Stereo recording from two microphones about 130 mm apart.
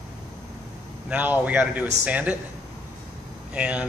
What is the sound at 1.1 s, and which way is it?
Speech, 10° right (ahead or behind).